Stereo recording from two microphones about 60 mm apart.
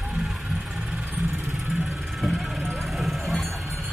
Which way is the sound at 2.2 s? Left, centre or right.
Centre.